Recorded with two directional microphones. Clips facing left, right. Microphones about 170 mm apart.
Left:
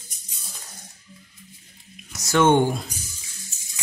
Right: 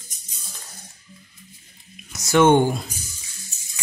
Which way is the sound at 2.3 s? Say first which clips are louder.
Right 2 dB; 15° right (ahead or behind).